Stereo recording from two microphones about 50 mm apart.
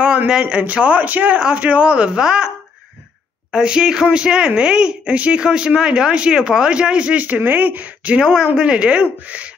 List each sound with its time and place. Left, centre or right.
0.3 s speech: right
3.5 s speech: centre
8.2 s speech: centre